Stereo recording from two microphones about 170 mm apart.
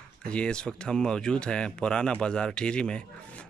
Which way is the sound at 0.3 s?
5° left (ahead or behind).